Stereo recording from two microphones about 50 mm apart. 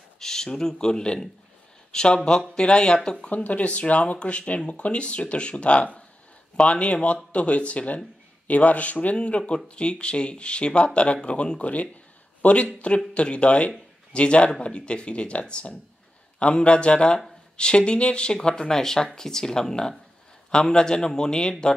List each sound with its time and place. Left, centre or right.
0.2 s speech: centre